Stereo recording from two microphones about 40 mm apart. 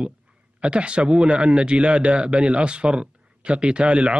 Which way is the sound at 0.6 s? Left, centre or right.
Right.